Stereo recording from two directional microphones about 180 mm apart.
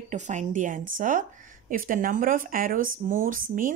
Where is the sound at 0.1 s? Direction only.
40° right (ahead or behind).